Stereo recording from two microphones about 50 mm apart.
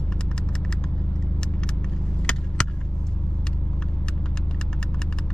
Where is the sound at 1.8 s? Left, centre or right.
Centre.